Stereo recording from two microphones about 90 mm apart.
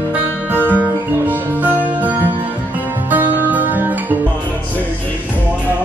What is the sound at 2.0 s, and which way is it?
Music, 20° right (ahead or behind).